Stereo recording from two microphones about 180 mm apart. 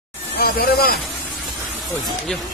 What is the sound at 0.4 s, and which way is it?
Speech, 55° left (ahead or behind).